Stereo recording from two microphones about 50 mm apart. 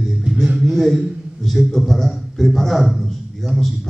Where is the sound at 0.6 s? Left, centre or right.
Centre.